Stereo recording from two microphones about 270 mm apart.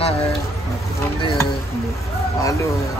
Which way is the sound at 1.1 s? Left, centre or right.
Centre.